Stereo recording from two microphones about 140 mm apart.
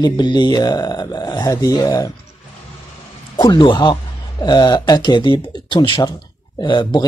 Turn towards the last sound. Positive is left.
turn(degrees=35)  # may be behind; listen again after turning